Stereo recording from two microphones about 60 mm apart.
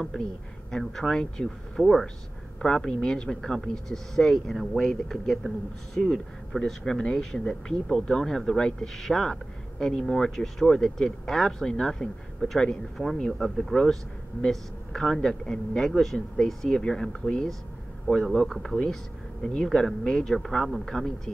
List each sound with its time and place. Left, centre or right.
0.7 s speech: centre
18.1 s speech: left
18.5 s speech: centre